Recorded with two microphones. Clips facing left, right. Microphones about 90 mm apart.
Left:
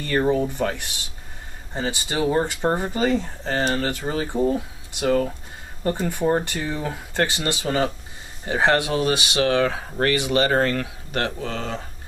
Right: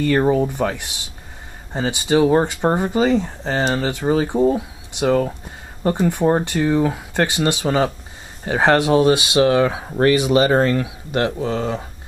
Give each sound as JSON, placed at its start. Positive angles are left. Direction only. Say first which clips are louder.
{"t": 0.3, "sound": "speech", "louder": "right 3 dB", "side_deg": -15}
{"t": 4.6, "sound": "speech", "louder": "right 5 dB", "side_deg": -15}